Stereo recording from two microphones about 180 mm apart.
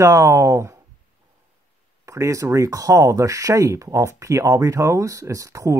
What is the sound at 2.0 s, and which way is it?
Speech, 15° right (ahead or behind).